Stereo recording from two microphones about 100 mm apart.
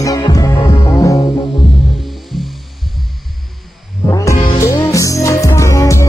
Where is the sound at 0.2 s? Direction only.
35° left (ahead or behind).